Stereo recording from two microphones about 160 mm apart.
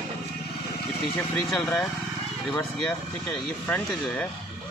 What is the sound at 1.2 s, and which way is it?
Speech, 5° left (ahead or behind).